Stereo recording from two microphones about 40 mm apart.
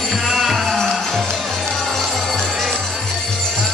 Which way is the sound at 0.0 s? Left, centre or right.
Centre.